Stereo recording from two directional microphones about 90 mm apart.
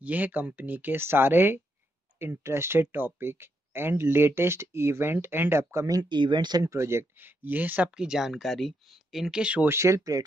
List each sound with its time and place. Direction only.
0.0 s speech: 20° right (ahead or behind)
5.9 s speech: 60° right (ahead or behind)
6.6 s speech: 30° right (ahead or behind)
7.9 s speech: 5° right (ahead or behind)
9.7 s speech: 30° right (ahead or behind)